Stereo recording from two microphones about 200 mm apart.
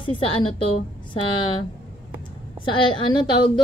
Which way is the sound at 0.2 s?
30° left (ahead or behind).